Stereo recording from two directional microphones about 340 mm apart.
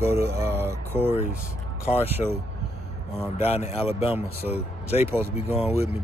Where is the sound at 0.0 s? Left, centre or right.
Centre.